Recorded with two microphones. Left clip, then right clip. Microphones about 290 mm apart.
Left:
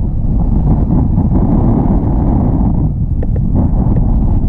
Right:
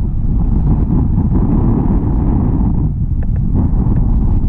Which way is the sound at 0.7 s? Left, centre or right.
Centre.